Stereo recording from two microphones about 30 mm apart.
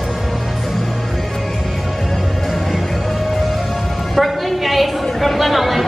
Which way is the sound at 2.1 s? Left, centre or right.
Centre.